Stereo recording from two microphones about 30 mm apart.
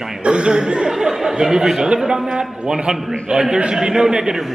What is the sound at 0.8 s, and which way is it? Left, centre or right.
A man's voice, centre.